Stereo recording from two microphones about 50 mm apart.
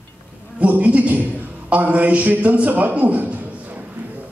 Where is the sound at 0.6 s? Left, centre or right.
Right.